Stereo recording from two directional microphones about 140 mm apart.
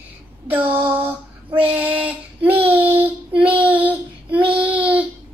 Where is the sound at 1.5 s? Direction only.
10° right (ahead or behind).